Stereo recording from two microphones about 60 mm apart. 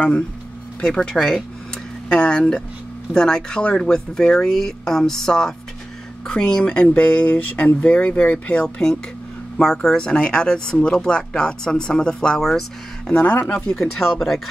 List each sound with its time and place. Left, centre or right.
0.8 s speech: centre
6.9 s speech: left; by 13.1 s centre
13.1 s speech: left
13.7 s speech: centre